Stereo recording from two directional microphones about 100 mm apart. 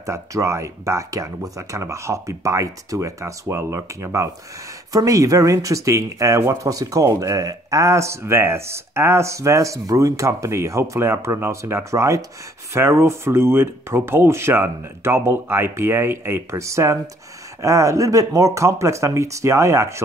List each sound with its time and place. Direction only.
0.0 s speech: 30° right (ahead or behind)